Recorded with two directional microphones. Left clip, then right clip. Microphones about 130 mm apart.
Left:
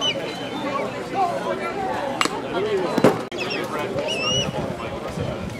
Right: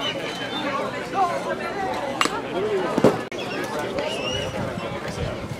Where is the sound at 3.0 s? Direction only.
20° left (ahead or behind).